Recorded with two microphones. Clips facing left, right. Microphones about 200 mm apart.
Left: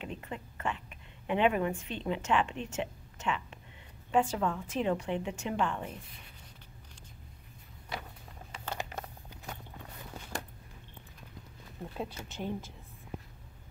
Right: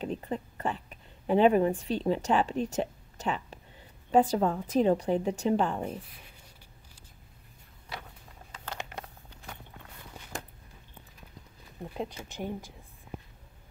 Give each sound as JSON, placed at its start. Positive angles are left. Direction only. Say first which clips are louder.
{"t": 0.0, "sound": "a woman's voice", "louder": "right 7 dB", "side_deg": -35}
{"t": 8.6, "sound": "a sound", "louder": "left 1 dB", "side_deg": 0}
{"t": 11.8, "sound": "speech", "louder": "right 3 dB", "side_deg": -15}